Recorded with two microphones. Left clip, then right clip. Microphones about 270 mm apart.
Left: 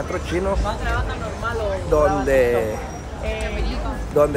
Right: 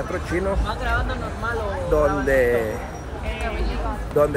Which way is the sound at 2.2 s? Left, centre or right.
Centre.